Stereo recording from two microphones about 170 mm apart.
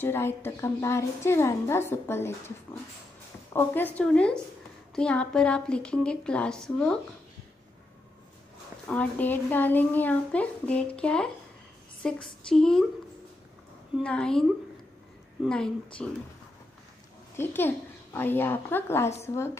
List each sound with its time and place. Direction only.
0.0 s a woman's voice: 15° left (ahead or behind)
8.8 s a woman's voice: 10° left (ahead or behind)
12.0 s a sound: 5° left (ahead or behind)
12.4 s a woman's voice: 5° left (ahead or behind)
14.0 s a woman's voice: 5° left (ahead or behind)
15.4 s a woman's voice: 5° left (ahead or behind)
17.4 s a woman's voice: 10° left (ahead or behind)